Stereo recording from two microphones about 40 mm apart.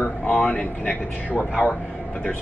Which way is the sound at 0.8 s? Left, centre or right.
Left.